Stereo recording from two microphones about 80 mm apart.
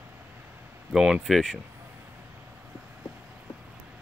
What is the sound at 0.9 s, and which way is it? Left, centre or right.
Speech, centre.